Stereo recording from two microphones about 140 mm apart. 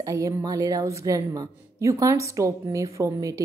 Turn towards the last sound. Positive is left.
turn(degrees=-25)  # may be behind; listen again after turning